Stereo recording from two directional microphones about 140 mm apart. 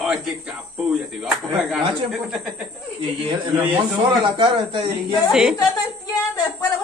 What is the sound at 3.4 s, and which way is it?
Speech, 30° right (ahead or behind).